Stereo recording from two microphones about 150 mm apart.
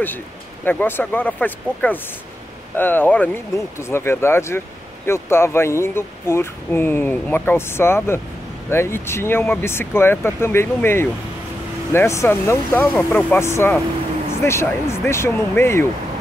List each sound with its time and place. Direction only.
0.7 s speech: 15° left (ahead or behind)